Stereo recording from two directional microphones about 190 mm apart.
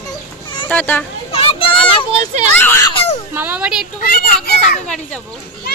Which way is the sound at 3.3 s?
10° right (ahead or behind).